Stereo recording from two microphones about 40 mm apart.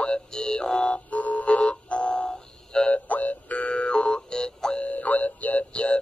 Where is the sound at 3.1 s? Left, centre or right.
Left; by 4.8 s centre.